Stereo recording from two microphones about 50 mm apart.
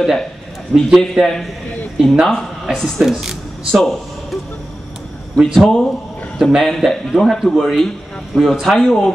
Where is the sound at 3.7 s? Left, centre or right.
Centre.